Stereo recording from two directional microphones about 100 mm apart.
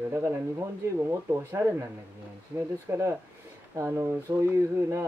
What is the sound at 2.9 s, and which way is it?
Speech, 25° right (ahead or behind).